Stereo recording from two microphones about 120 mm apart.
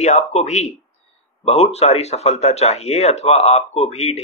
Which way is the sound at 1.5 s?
60° left (ahead or behind).